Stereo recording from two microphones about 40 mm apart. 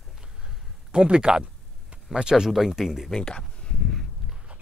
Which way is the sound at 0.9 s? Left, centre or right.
Right.